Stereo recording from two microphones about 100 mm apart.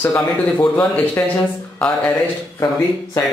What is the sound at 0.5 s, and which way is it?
Speech, 15° left (ahead or behind).